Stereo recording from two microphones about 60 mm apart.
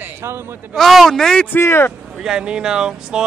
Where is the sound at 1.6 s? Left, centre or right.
Left.